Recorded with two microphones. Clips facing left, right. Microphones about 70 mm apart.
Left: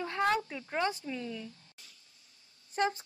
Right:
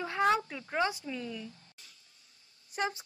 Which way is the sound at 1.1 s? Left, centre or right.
Centre.